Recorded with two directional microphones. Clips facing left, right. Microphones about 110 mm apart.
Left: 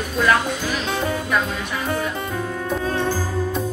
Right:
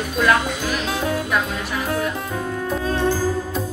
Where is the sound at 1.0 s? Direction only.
Centre (ahead or behind).